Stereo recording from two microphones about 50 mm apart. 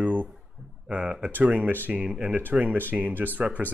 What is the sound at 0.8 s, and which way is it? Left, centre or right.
Speech, centre.